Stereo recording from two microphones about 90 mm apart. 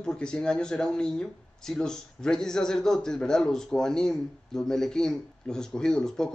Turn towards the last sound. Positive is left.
turn(degrees=5)  # may be behind; listen again after turning